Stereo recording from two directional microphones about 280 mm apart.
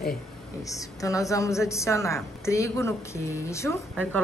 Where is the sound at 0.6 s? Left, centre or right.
Centre.